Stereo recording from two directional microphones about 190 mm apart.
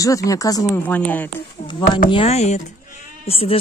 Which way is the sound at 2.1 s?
30° left (ahead or behind).